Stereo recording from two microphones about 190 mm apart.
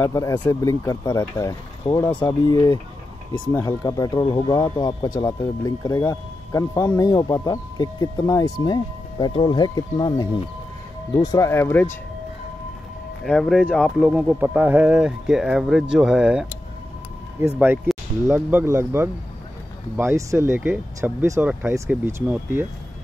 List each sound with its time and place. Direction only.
0.0 s speech: 15° left (ahead or behind)
13.2 s speech: centre (ahead or behind)
17.6 s speech: 10° right (ahead or behind)